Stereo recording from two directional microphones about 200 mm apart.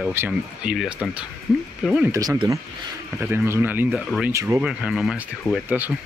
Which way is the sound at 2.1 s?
20° right (ahead or behind).